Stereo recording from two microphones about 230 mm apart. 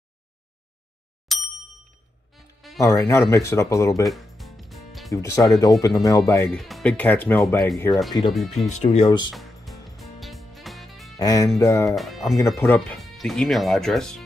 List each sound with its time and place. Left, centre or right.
1.3 s ding: centre
2.3 s insect: centre
2.8 s speech: centre
4.0 s music: centre
5.1 s speech: centre
6.5 s speech: centre
8.8 s speech: left
9.3 s music: centre
11.1 s speech: centre
11.9 s speech: centre
12.4 s speech: centre
12.6 s speech: centre